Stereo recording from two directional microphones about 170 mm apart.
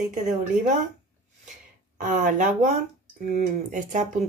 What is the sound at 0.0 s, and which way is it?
Speech, 50° right (ahead or behind).